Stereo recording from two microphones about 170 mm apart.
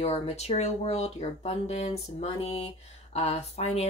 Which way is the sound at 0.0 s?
40° left (ahead or behind).